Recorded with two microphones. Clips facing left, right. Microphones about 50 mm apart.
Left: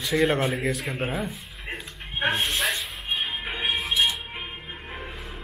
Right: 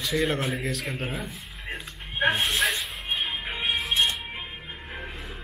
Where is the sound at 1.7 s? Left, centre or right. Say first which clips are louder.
Left 1 dB; left.